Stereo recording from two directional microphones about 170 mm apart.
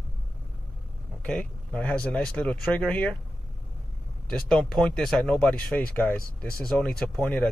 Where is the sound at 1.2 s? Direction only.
5° left (ahead or behind).